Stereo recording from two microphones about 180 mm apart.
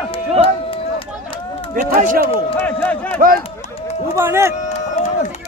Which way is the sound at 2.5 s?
10° left (ahead or behind).